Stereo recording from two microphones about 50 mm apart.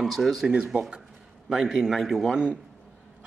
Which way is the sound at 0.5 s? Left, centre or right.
Centre.